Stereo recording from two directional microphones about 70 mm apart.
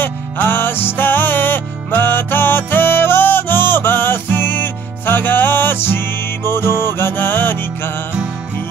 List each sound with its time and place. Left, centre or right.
0.0 s music: left